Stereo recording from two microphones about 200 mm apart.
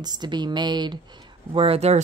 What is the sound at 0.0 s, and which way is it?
Speech, 20° right (ahead or behind).